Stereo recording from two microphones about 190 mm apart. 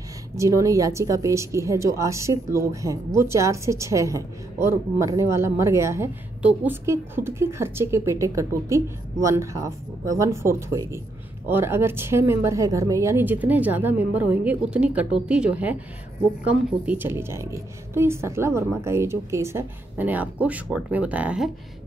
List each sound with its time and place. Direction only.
0.4 s a woman's voice: 15° right (ahead or behind)